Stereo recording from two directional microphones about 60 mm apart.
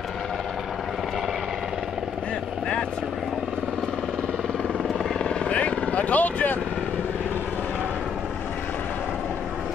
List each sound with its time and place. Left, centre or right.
5.2 s vehicle: centre